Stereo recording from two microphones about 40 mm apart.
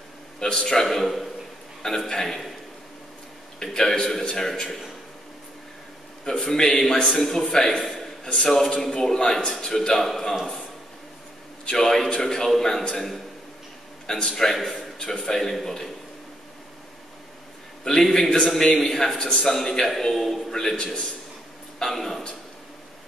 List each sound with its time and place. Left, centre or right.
0.4 s a man's voice: centre
0.8 s a man's voice: centre
2.0 s a man's voice: centre
3.5 s a man's voice: centre
6.2 s a man's voice: centre
7.8 s a sound: centre
8.3 s a man's voice: centre
11.6 s a man's voice: centre
14.0 s a man's voice: centre
17.8 s a man's voice: centre
20.5 s a man's voice: centre
21.7 s a man's voice: centre